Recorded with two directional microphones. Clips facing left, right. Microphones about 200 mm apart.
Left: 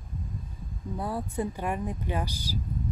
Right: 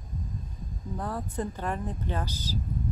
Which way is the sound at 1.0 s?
10° left (ahead or behind).